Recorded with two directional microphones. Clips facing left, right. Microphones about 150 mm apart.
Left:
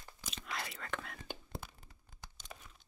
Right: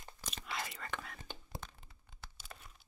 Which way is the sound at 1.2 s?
10° left (ahead or behind).